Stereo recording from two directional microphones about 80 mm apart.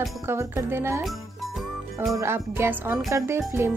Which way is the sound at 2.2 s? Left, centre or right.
Right.